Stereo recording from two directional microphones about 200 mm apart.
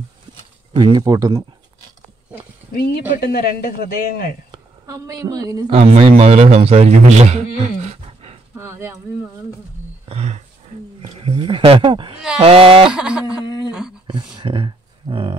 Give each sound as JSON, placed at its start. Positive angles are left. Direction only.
{"t": 0.7, "sound": "speech", "side_deg": -20}
{"t": 2.7, "sound": "speech", "side_deg": 50}
{"t": 4.5, "sound": "a woman's voice", "side_deg": -20}
{"t": 5.7, "sound": "a man's voice", "side_deg": -30}
{"t": 8.5, "sound": "speech", "side_deg": -10}
{"t": 10.0, "sound": "a sound", "side_deg": -30}
{"t": 11.0, "sound": "speech", "side_deg": -25}
{"t": 12.9, "sound": "a sound", "side_deg": -5}
{"t": 14.0, "sound": "speech", "side_deg": -25}